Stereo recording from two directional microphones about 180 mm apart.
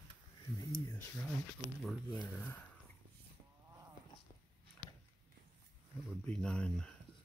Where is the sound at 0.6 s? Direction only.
15° left (ahead or behind).